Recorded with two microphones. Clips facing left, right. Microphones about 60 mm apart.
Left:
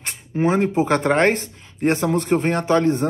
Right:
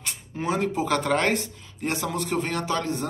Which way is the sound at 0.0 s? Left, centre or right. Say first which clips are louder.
Left 9 dB; left.